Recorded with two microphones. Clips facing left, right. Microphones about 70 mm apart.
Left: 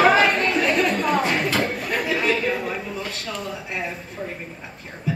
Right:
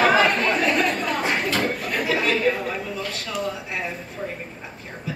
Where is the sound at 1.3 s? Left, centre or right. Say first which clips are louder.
Left 1 dB; centre.